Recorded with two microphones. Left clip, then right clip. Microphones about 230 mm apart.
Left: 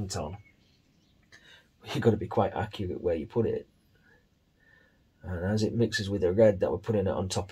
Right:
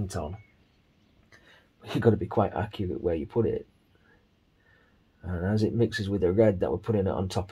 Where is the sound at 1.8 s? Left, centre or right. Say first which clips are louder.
Right 2 dB; right.